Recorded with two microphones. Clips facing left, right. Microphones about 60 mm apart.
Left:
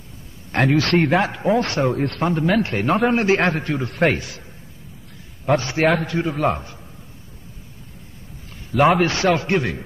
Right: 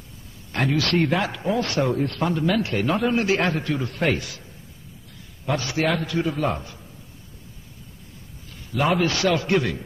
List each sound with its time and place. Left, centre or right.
0.5 s a man's voice: left
5.4 s a man's voice: left
8.7 s a man's voice: left
9.1 s a man's voice: left